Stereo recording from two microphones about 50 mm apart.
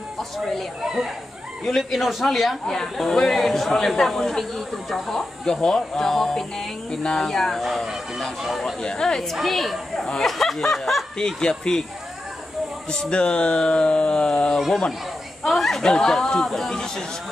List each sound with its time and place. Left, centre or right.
1.8 s speech: centre
2.6 s speech: centre
7.6 s speech: centre
8.8 s speech: centre
11.1 s speech: centre
13.1 s speech: left
15.4 s speech: centre